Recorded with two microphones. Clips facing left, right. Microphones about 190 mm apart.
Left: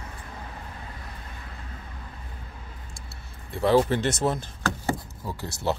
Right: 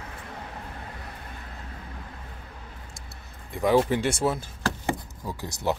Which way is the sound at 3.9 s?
10° right (ahead or behind).